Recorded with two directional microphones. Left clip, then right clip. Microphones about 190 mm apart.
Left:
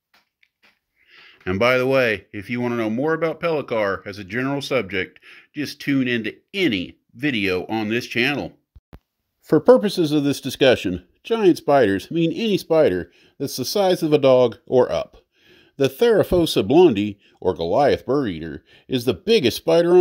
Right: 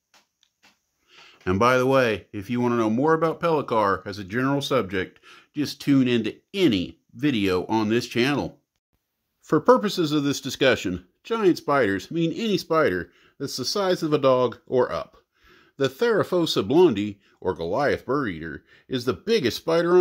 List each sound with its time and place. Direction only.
1.2 s speech: 5° right (ahead or behind)
9.5 s speech: 20° left (ahead or behind)